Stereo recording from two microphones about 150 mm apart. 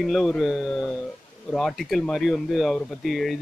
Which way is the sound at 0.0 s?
Centre (ahead or behind).